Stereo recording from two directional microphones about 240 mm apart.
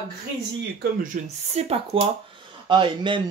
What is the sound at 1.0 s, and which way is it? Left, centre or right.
Speech, right.